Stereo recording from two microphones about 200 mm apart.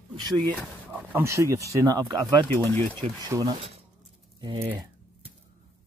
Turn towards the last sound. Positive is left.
turn(degrees=-15)  # may be behind; listen again after turning